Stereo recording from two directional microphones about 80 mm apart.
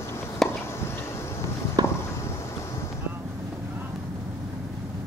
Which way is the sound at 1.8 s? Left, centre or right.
Right.